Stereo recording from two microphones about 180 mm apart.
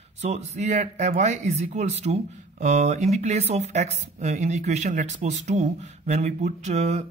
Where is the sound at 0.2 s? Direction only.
40° right (ahead or behind).